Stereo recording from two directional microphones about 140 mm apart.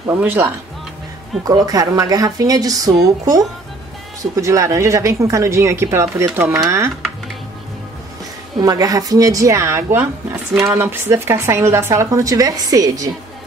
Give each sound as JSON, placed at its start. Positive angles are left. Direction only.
{"t": 0.0, "sound": "a woman's voice", "side_deg": -15}
{"t": 8.5, "sound": "a woman's voice", "side_deg": -25}